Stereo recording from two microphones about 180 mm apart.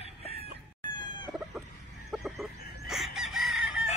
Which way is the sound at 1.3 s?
Centre (ahead or behind).